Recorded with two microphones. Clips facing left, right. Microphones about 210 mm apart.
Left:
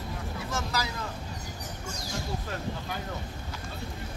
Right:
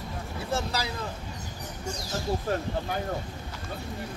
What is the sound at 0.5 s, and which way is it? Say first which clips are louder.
Speech: right 3 dB; 30° right (ahead or behind).